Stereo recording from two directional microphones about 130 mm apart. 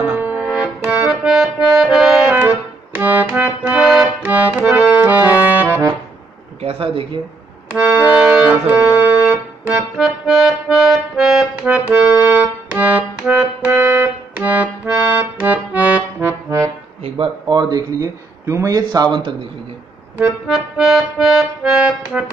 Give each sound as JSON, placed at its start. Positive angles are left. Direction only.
{"t": 0.0, "sound": "music", "side_deg": -15}
{"t": 0.5, "sound": "accordion", "side_deg": -10}
{"t": 6.6, "sound": "speech", "side_deg": -45}
{"t": 7.7, "sound": "organ", "side_deg": -10}
{"t": 11.9, "sound": "music", "side_deg": -10}
{"t": 14.3, "sound": "accordion", "side_deg": -10}
{"t": 17.5, "sound": "speech", "side_deg": -30}
{"t": 20.2, "sound": "accordion", "side_deg": -5}